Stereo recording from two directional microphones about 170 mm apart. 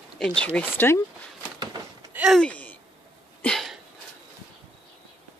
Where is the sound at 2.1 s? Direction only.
5° right (ahead or behind).